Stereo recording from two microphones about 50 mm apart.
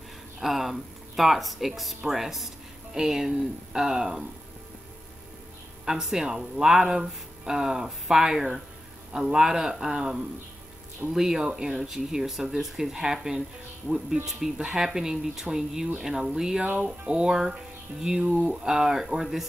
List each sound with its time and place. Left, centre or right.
0.4 s speech: centre
5.9 s speech: centre
16.6 s speech: right; by 19.4 s centre